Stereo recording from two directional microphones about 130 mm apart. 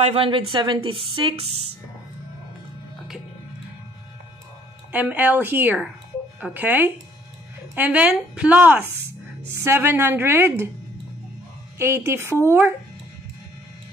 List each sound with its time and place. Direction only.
0.0 s a woman's voice: 45° right (ahead or behind)
4.9 s a woman's voice: 15° right (ahead or behind)
11.8 s a woman's voice: 20° right (ahead or behind)